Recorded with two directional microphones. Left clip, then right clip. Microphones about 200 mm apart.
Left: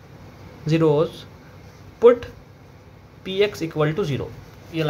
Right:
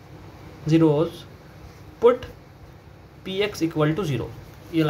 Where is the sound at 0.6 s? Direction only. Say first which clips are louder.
Left 1 dB; 10° left (ahead or behind).